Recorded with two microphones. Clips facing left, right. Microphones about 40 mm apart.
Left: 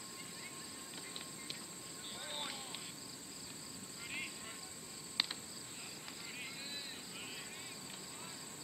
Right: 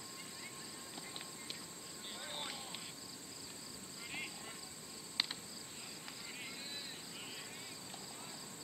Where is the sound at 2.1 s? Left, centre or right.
Centre.